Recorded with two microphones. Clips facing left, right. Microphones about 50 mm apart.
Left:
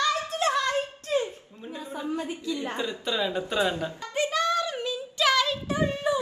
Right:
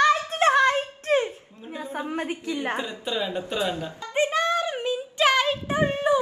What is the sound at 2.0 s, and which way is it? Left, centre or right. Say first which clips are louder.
Speech: right 2 dB; right.